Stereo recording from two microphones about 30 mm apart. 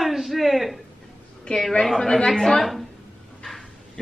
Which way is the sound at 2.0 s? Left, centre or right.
Centre.